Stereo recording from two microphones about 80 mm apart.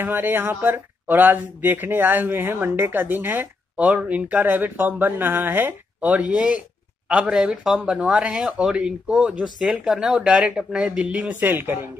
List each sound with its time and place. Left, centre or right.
0.0 s speech: right